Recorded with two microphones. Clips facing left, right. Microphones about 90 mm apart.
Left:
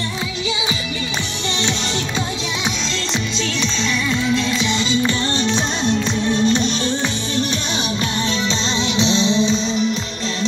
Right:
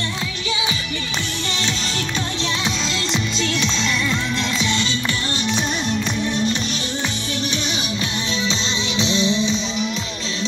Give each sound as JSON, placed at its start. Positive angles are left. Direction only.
{"t": 4.4, "sound": "music", "side_deg": 0}
{"t": 4.7, "sound": "music", "side_deg": 15}
{"t": 5.0, "sound": "music", "side_deg": 25}
{"t": 8.5, "sound": "music", "side_deg": 30}